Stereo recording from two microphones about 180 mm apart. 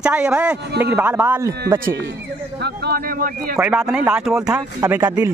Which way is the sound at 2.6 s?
60° right (ahead or behind).